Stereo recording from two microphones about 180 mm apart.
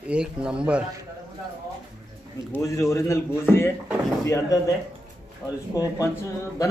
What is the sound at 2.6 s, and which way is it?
Speech, 15° left (ahead or behind).